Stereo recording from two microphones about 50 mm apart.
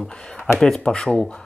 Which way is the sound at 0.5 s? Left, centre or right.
Centre.